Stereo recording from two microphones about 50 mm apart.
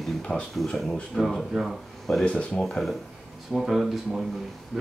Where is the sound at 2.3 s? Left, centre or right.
Left.